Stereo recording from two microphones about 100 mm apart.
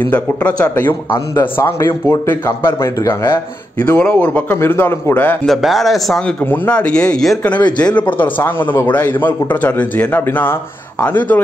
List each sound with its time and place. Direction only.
0.0 s a man's voice: 15° left (ahead or behind)
1.3 s a man's voice: 25° left (ahead or behind)
3.7 s a man's voice: 15° left (ahead or behind)
5.5 s speech: centre (ahead or behind)
6.4 s a man's voice: 20° left (ahead or behind)